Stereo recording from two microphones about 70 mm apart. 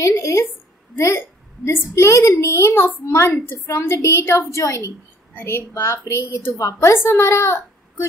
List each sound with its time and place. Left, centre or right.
0.0 s a sound: left
0.9 s a woman's voice: left
5.3 s a woman's voice: left